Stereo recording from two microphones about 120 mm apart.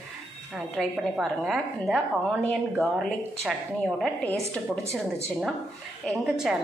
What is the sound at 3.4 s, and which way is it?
Speech, centre (ahead or behind).